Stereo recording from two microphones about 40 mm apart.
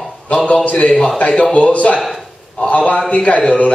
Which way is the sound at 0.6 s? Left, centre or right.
Left.